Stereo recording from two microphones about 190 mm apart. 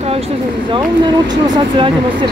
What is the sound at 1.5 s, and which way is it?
Speech, 25° right (ahead or behind).